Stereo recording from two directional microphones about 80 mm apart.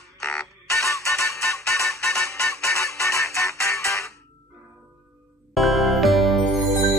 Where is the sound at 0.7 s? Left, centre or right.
Left.